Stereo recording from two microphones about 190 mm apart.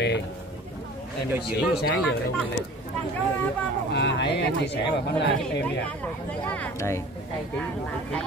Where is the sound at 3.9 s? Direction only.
65° left (ahead or behind).